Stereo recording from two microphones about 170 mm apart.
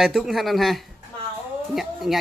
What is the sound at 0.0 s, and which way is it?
Speech, centre (ahead or behind).